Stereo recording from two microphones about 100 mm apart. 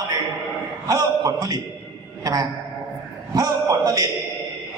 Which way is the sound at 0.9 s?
40° right (ahead or behind).